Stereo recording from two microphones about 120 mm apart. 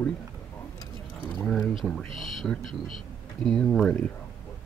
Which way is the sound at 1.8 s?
5° left (ahead or behind).